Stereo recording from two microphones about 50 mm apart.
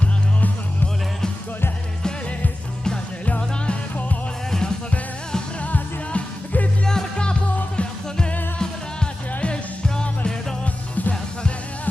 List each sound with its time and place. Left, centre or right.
3.3 s music: left
5.6 s music: left
6.8 s music: centre
10.6 s music: left